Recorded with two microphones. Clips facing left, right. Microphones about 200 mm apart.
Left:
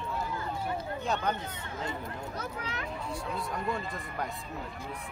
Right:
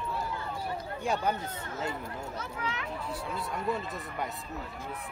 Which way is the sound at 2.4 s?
40° left (ahead or behind).